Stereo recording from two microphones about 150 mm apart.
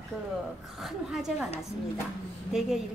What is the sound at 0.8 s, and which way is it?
Speech, centre (ahead or behind).